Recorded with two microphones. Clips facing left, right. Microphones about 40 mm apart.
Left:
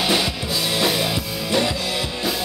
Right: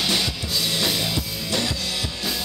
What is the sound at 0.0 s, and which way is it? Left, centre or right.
Music, centre.